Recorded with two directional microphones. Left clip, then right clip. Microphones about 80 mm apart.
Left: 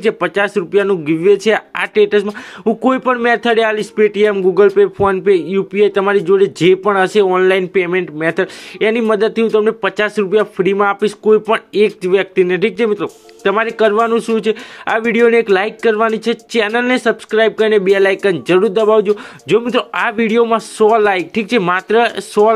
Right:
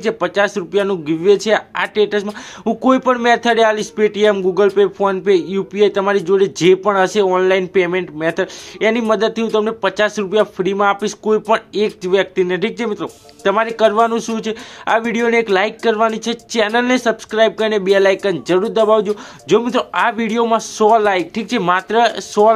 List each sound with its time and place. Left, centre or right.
0.0 s speech: left
2.6 s speech: left
18.5 s speech: left